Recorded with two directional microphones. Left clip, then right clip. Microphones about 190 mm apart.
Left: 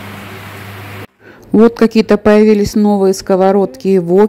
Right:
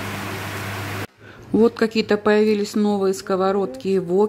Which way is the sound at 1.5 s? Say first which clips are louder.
Left 8 dB; 25° left (ahead or behind).